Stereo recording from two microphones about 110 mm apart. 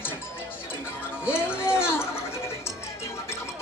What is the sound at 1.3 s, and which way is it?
Music, 20° left (ahead or behind).